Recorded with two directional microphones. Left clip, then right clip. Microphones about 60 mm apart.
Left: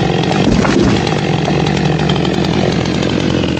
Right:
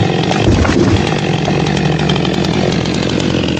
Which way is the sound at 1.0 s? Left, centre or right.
Centre.